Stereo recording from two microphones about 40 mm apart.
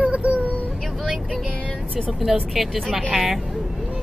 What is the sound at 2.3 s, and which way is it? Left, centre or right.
Speech, centre.